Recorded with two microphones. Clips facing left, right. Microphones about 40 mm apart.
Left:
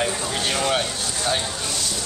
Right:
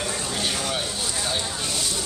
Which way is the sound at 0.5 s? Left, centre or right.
Left.